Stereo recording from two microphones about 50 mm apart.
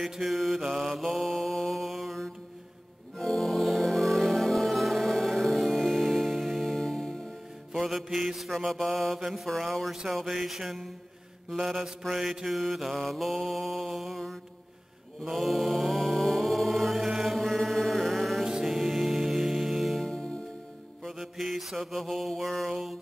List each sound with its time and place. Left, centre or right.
0.0 s mantra: centre
3.2 s music: centre
7.7 s mantra: centre
9.5 s mantra: centre
15.2 s chant: centre
17.0 s music: centre
18.4 s music: centre
20.1 s music: centre
21.1 s mantra: centre